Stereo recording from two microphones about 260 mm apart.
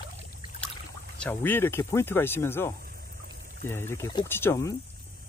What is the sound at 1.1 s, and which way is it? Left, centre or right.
Speech, centre.